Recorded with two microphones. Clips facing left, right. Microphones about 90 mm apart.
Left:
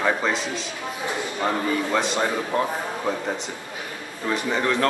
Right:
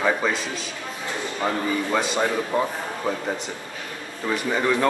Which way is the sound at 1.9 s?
Centre (ahead or behind).